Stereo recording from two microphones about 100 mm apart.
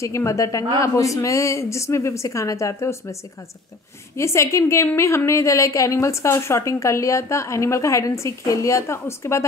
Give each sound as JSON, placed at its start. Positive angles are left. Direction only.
{"t": 0.0, "sound": "a woman's voice", "side_deg": 30}
{"t": 4.2, "sound": "a woman's voice", "side_deg": 30}